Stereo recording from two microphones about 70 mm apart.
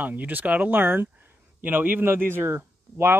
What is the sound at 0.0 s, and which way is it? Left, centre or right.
A man's voice, right.